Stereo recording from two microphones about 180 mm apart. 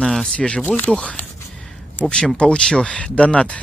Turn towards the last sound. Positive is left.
turn(degrees=5)  # may be behind; listen again after turning